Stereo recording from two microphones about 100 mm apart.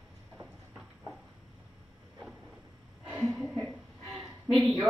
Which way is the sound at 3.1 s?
Centre (ahead or behind).